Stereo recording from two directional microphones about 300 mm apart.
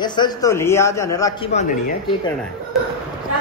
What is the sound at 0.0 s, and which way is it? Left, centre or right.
A man's voice, centre.